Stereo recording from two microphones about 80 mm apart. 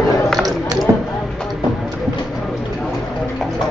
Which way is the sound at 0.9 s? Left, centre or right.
Right.